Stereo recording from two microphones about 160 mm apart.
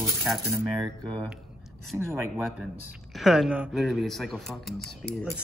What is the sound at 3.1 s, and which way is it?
Speech, centre (ahead or behind).